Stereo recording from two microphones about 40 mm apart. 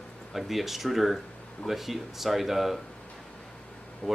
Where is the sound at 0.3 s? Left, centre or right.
Centre.